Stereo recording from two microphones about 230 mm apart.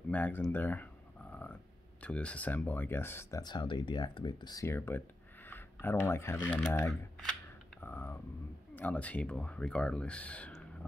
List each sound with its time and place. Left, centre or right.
0.1 s speech: centre
7.8 s a sound: centre
8.7 s speech: centre